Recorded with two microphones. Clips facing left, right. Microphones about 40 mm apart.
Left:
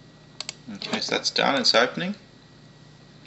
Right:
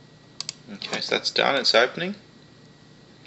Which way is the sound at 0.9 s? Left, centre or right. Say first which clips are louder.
Right 1 dB; centre.